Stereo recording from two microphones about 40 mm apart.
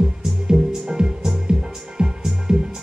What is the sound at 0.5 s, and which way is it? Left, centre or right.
Music, centre.